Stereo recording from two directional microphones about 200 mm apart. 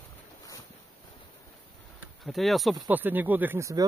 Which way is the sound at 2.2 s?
Centre (ahead or behind).